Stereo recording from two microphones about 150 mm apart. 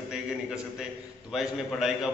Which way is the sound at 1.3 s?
5° right (ahead or behind).